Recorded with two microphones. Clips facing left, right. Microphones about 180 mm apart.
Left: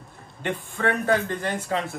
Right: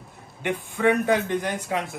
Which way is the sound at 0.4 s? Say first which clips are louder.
Right 3 dB; 15° right (ahead or behind).